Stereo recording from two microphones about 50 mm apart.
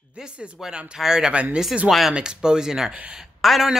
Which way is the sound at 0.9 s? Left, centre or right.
Centre.